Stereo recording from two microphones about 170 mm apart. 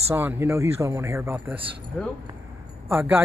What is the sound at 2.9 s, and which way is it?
Speech, 15° right (ahead or behind).